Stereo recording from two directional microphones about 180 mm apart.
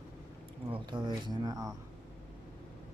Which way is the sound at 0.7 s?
25° right (ahead or behind).